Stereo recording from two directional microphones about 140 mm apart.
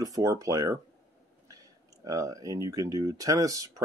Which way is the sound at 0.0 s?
25° right (ahead or behind).